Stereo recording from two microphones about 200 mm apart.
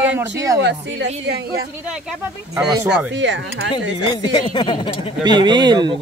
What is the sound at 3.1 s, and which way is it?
Speech, 65° right (ahead or behind).